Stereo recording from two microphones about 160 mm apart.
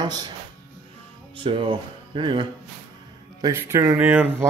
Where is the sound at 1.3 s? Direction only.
35° right (ahead or behind).